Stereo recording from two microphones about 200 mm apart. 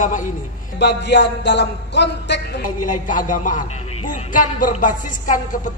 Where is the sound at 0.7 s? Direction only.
60° left (ahead or behind).